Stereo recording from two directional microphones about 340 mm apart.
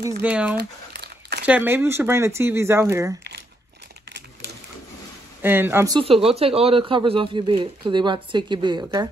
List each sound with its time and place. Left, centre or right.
0.0 s speech: centre
0.6 s crumpling: right
1.4 s speech: centre
5.4 s speech: centre